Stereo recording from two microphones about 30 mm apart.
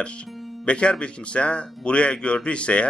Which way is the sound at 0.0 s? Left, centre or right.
Left.